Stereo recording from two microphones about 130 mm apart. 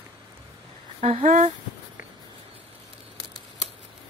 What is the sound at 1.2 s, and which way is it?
Speech, 75° right (ahead or behind).